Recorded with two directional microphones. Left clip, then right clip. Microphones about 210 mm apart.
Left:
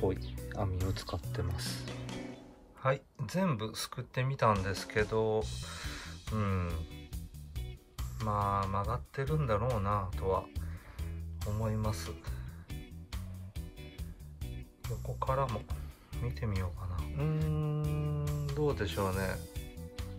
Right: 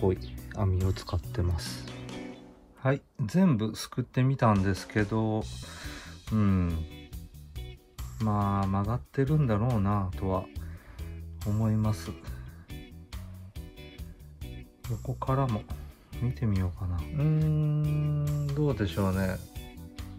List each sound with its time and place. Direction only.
0.1 s music: 25° right (ahead or behind)
1.3 s music: 15° right (ahead or behind)
1.9 s music: centre (ahead or behind)
2.8 s speech: centre (ahead or behind)
8.2 s speech: centre (ahead or behind)
12.7 s music: centre (ahead or behind)
14.4 s speech: centre (ahead or behind)